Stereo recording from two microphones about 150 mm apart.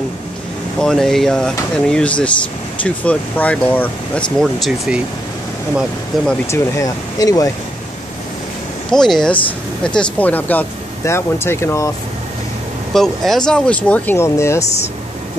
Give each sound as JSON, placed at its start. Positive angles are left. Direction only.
{"t": 0.7, "sound": "speech", "side_deg": 5}
{"t": 6.1, "sound": "speech", "side_deg": 0}
{"t": 6.5, "sound": "speech", "side_deg": 20}
{"t": 8.9, "sound": "speech", "side_deg": 5}
{"t": 12.9, "sound": "speech", "side_deg": 0}
{"t": 14.6, "sound": "speech", "side_deg": 45}